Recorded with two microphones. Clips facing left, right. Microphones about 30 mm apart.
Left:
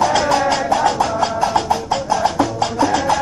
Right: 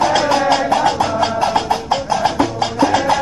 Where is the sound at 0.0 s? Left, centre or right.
Right.